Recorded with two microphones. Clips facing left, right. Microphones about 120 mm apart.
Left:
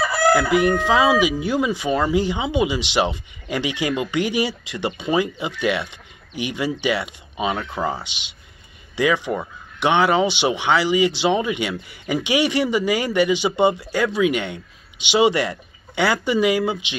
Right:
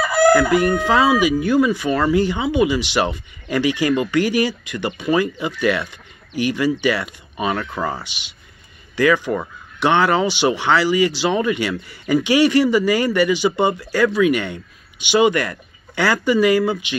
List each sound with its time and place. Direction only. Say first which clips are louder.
0.3 s chicken: right 1 dB; 15° left (ahead or behind)
0.8 s speech: right 1 dB; 15° left (ahead or behind)